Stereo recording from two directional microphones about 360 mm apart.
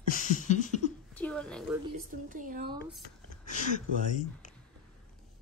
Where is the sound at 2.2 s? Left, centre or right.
Right.